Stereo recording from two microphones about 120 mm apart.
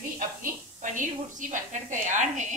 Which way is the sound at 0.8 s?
90° right.